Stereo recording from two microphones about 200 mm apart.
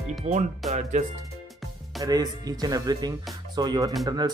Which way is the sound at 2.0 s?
20° right (ahead or behind).